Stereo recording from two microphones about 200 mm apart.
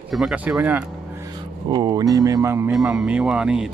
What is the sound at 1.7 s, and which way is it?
Speech, 20° right (ahead or behind).